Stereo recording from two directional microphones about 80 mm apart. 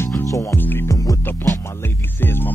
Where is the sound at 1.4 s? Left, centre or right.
Left.